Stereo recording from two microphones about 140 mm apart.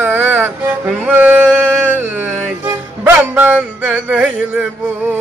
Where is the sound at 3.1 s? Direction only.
15° right (ahead or behind).